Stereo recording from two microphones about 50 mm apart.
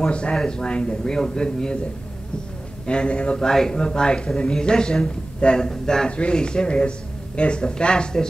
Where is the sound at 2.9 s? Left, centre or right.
Centre.